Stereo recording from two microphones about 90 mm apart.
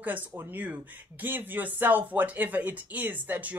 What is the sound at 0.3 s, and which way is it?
Speech, 30° right (ahead or behind).